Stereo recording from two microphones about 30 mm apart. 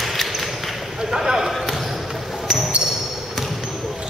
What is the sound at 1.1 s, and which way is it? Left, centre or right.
Basketball bounce, centre.